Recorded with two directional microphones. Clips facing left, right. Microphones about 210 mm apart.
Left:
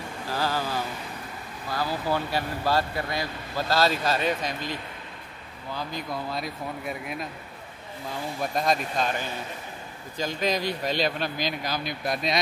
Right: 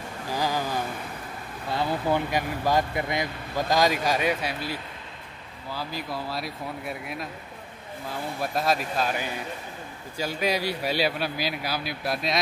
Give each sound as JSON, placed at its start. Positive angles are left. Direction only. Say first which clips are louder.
{"t": 0.3, "sound": "a sound", "louder": "right 1 dB", "side_deg": -15}
{"t": 1.7, "sound": "speech", "louder": "right 2 dB", "side_deg": -25}
{"t": 8.4, "sound": "speech", "louder": "even", "side_deg": -5}